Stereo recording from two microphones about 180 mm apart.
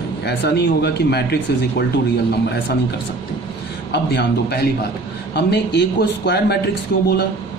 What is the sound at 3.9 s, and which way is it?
Speech, 65° left (ahead or behind).